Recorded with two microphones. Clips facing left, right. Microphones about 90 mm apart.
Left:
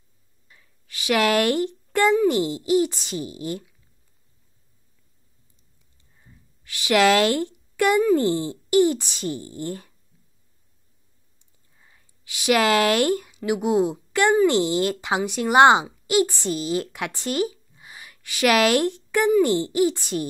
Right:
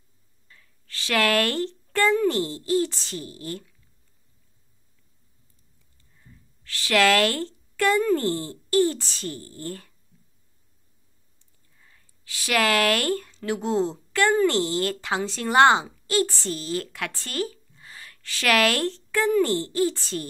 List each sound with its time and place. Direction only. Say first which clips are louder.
0.5 s speech: right 1 dB; 15° left (ahead or behind)
6.1 s a woman's voice: right 1 dB; 15° left (ahead or behind)
11.3 s speech: left 1 dB; 20° left (ahead or behind)